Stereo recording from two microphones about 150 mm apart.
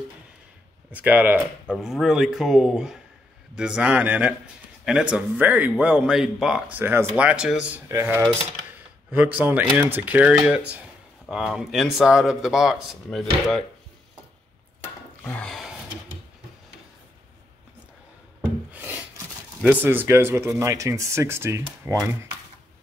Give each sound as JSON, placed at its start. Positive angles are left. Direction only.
{"t": 0.9, "sound": "speech", "side_deg": -10}
{"t": 6.8, "sound": "speech", "side_deg": -15}
{"t": 14.8, "sound": "wood", "side_deg": 10}
{"t": 18.7, "sound": "wood", "side_deg": -10}
{"t": 19.6, "sound": "speech", "side_deg": -10}